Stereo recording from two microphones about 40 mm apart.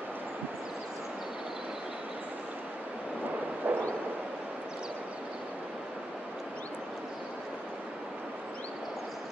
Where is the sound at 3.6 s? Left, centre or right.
Right.